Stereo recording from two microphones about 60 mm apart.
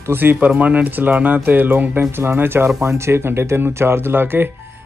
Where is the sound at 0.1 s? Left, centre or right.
Right.